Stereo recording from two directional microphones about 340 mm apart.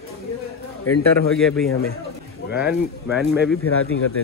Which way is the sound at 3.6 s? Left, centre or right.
Left.